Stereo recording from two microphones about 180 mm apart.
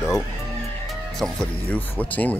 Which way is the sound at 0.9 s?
Centre (ahead or behind).